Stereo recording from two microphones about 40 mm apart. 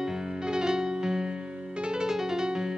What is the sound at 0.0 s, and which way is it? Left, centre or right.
Music, centre.